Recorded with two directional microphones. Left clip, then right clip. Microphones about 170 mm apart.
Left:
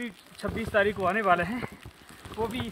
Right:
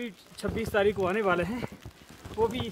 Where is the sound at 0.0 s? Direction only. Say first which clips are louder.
Even; 90° right.